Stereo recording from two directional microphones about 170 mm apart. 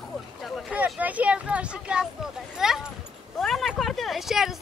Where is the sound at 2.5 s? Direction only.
5° right (ahead or behind).